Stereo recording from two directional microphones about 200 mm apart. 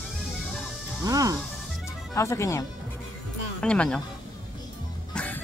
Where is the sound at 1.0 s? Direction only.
15° right (ahead or behind).